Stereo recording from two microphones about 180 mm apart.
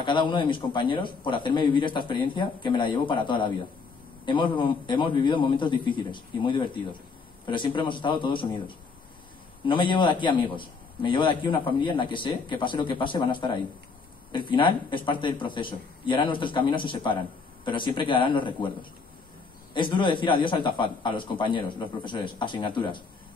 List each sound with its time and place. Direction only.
0.0 s a man's voice: 25° left (ahead or behind)